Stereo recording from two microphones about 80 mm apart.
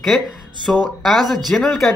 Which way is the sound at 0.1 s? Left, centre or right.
Centre.